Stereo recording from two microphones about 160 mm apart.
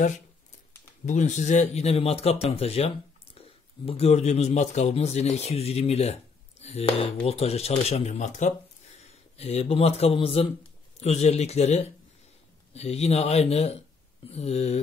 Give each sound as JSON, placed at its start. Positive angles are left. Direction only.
{"t": 1.0, "sound": "a man's voice", "side_deg": 50}